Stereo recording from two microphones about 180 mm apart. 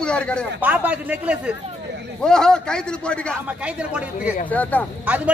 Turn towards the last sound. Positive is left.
turn(degrees=-5)  # may be behind; listen again after turning